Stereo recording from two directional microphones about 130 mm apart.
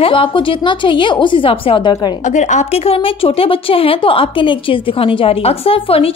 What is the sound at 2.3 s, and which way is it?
Speech, 65° left (ahead or behind).